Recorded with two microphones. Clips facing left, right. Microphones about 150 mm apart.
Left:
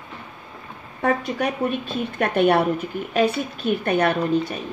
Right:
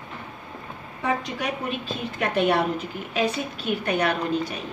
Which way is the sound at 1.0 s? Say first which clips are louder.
Left 5 dB; 55° left (ahead or behind).